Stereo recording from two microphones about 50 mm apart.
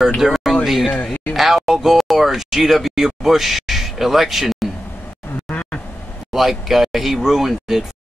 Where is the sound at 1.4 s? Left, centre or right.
Centre.